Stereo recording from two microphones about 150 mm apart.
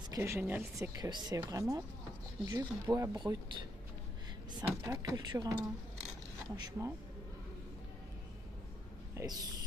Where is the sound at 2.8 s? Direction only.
20° right (ahead or behind).